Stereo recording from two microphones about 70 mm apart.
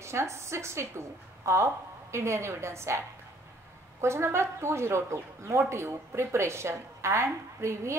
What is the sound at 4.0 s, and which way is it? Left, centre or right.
Speech, right.